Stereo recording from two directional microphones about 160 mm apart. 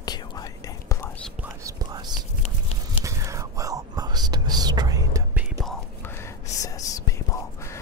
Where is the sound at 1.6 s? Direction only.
25° right (ahead or behind).